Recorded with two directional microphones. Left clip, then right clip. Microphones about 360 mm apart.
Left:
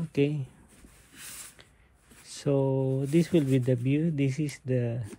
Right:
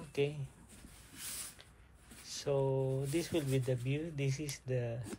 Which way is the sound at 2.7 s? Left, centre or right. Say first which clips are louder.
Left 7 dB; left.